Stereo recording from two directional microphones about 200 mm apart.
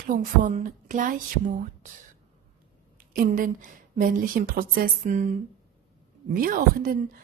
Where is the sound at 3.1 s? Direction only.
45° right (ahead or behind).